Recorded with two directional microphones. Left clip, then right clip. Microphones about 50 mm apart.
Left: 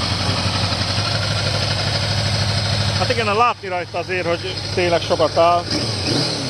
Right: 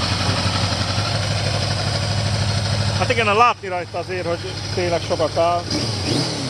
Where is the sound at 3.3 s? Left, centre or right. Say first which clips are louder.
Right 2 dB; centre.